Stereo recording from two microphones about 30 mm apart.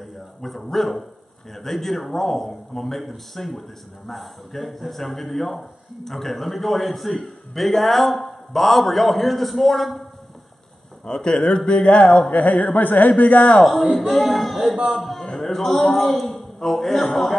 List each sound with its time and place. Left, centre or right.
0.0 s dog: centre
0.6 s a man's voice: centre
11.1 s speech: left
13.1 s a man's voice: left
13.9 s a man's voice: centre